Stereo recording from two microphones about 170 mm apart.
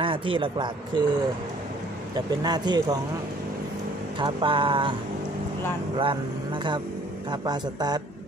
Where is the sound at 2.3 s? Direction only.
25° right (ahead or behind).